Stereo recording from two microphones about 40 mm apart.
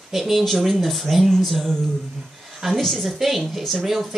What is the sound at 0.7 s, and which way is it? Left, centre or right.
Speech, centre.